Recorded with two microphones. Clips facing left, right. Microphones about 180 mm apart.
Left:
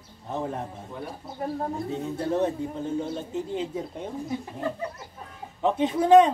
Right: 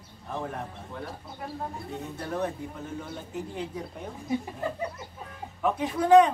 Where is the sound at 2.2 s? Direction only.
25° left (ahead or behind).